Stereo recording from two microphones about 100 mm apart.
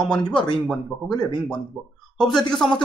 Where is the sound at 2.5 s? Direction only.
5° left (ahead or behind).